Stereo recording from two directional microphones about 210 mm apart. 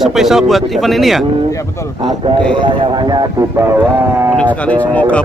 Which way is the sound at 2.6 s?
25° right (ahead or behind).